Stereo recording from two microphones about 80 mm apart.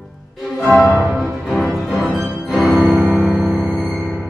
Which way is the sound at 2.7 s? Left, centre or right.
Centre.